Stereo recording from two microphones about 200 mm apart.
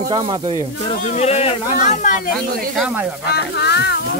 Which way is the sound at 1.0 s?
35° left (ahead or behind).